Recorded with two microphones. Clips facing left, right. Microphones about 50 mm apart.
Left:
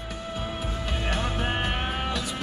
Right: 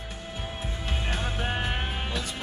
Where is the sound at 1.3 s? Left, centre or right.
Left.